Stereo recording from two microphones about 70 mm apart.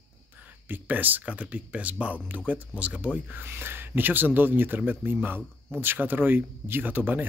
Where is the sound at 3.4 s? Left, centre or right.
Right.